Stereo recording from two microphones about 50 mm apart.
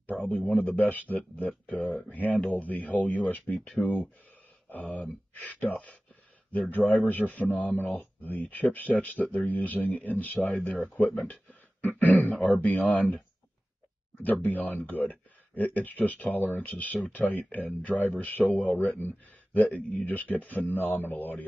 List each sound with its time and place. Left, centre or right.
0.0 s a sound: left
0.4 s a man's voice: centre
0.7 s a man's voice: left
14.2 s a man's voice: left